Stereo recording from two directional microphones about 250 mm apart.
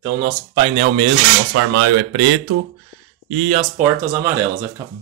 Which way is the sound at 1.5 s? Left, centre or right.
Right.